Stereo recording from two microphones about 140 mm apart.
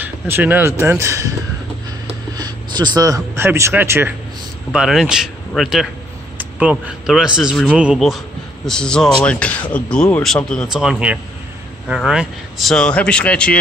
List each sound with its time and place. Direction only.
0.0 s speech: 15° right (ahead or behind)
2.3 s speech: 30° right (ahead or behind)
4.7 s a man's voice: 5° right (ahead or behind)